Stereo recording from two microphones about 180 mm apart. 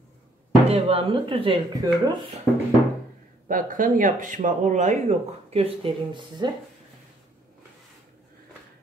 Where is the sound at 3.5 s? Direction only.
45° right (ahead or behind); by 6.5 s 30° right (ahead or behind).